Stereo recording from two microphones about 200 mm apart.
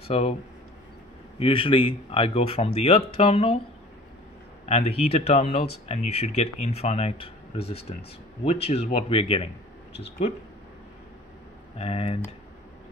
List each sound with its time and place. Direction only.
0.1 s speech: 30° left (ahead or behind)
1.4 s speech: 25° left (ahead or behind)
4.6 s speech: 30° left (ahead or behind)
11.7 s speech: 30° left (ahead or behind)